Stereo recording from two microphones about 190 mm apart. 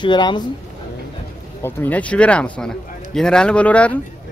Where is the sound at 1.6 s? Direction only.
10° left (ahead or behind).